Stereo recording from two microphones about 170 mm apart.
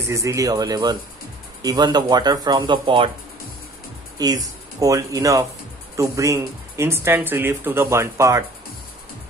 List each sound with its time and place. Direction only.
0.1 s speech: 15° right (ahead or behind)
4.2 s speech: 20° right (ahead or behind)